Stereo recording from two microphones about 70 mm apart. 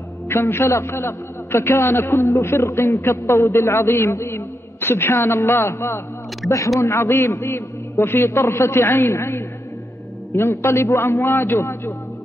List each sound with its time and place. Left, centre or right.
0.3 s a man's voice: left